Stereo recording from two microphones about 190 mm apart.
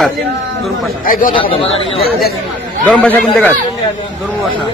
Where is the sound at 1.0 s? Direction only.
45° left (ahead or behind).